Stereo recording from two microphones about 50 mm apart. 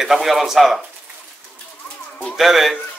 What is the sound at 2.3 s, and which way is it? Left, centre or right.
Speech, centre.